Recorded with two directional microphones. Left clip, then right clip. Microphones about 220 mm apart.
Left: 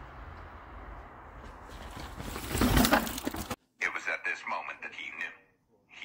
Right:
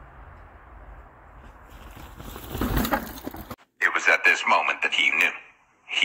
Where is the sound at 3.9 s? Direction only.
40° right (ahead or behind).